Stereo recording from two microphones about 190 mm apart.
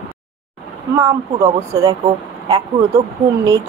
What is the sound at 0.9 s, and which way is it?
Speech, 15° right (ahead or behind).